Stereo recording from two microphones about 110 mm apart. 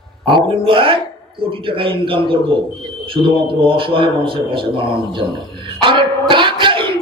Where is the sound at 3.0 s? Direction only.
55° right (ahead or behind).